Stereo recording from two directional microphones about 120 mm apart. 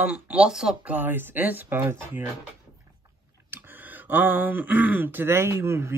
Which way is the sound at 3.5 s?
15° right (ahead or behind).